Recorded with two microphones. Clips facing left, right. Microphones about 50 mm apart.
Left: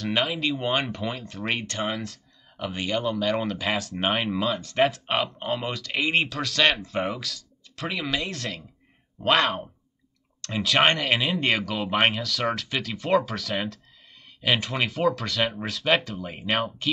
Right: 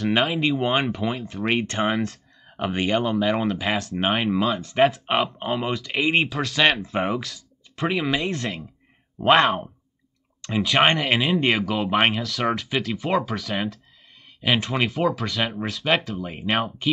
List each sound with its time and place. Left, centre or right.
0.3 s speech: centre
2.5 s speech: right
3.1 s speech: centre